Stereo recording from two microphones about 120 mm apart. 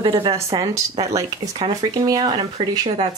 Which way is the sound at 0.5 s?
40° right (ahead or behind).